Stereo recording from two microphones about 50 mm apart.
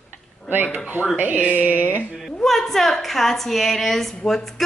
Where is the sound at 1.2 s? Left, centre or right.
Right.